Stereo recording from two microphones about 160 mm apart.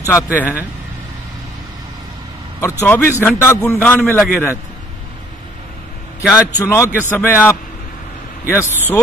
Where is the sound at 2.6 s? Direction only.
15° left (ahead or behind).